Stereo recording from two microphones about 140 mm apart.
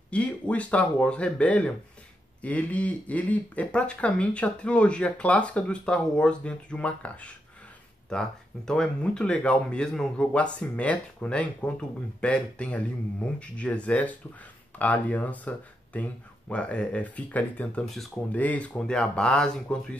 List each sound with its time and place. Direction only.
0.1 s speech: 10° left (ahead or behind)